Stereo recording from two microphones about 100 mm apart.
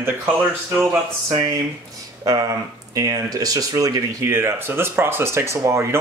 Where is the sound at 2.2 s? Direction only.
35° right (ahead or behind).